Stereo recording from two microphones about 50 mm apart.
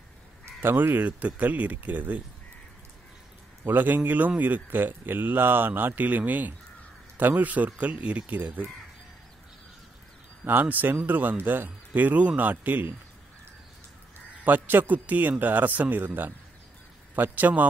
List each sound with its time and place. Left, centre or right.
0.6 s speech: right
3.6 s speech: right
10.4 s speech: right
14.4 s speech: right